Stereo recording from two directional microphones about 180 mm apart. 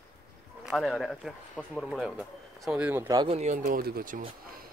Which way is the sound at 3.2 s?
35° right (ahead or behind).